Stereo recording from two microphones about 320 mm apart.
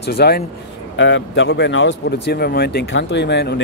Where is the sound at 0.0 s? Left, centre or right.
Left.